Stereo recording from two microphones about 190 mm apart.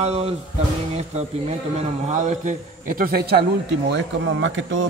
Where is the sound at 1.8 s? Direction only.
40° right (ahead or behind); by 3.4 s 55° right (ahead or behind).